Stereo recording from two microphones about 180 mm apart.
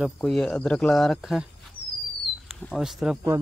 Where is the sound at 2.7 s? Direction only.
5° right (ahead or behind).